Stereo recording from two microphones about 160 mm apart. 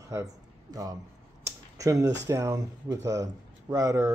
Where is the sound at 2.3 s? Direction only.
20° right (ahead or behind).